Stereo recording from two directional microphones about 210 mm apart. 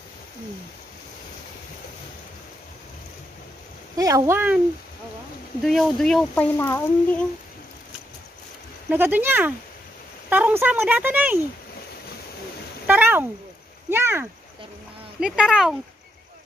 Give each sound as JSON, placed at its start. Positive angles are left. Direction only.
{"t": 3.9, "sound": "speech", "side_deg": -15}
{"t": 5.6, "sound": "speech", "side_deg": 0}
{"t": 8.9, "sound": "speech", "side_deg": -10}
{"t": 12.8, "sound": "speech", "side_deg": -10}